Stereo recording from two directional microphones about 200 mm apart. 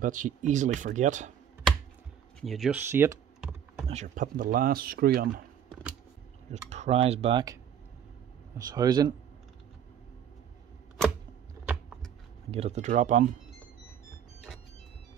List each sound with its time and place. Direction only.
0.0 s speech: 40° right (ahead or behind)
2.4 s speech: centre (ahead or behind)
2.9 s speech: 15° right (ahead or behind)
3.8 s speech: 35° right (ahead or behind)
6.7 s speech: 30° right (ahead or behind)
8.6 s speech: 20° right (ahead or behind)
12.4 s speech: 30° right (ahead or behind)